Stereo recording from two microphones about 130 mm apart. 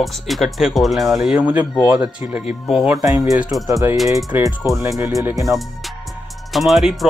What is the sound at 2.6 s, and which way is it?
Music, centre (ahead or behind).